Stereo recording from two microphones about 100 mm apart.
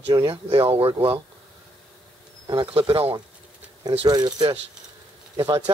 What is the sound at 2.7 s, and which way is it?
Speech, 60° right (ahead or behind).